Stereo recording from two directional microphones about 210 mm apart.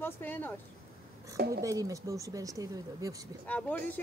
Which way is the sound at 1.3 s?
50° right (ahead or behind).